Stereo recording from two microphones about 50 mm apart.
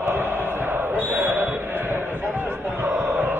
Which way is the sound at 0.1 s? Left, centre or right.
Right.